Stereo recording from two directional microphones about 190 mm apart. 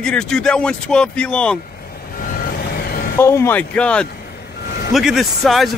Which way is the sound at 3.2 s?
15° left (ahead or behind).